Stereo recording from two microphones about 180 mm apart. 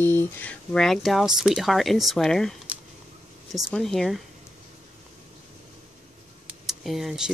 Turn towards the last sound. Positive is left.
turn(degrees=0)  # may be behind; listen again after turning